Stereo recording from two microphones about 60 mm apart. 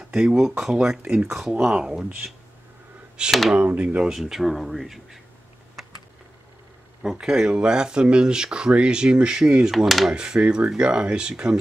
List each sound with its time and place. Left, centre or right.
0.0 s speech: centre
3.3 s speech: centre
3.5 s speech: right
4.1 s speech: centre
7.0 s speech: centre
9.7 s speech: centre
10.1 s speech: centre